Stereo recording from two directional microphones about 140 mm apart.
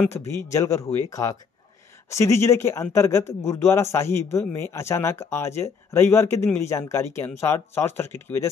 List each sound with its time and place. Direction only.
0.1 s speech: 20° left (ahead or behind)